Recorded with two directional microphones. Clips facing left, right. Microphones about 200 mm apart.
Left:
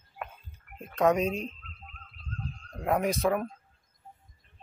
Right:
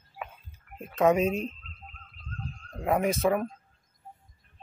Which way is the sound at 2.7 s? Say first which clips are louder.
Right 1 dB; centre (ahead or behind).